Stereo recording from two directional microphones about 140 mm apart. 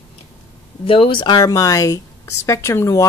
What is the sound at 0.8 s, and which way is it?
Speech, 40° left (ahead or behind).